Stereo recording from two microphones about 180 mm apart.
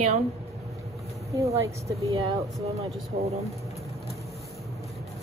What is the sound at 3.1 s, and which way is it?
Speech, 35° right (ahead or behind).